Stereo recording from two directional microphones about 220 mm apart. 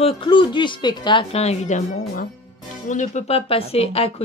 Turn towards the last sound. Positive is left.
turn(degrees=25)  # may be behind; listen again after turning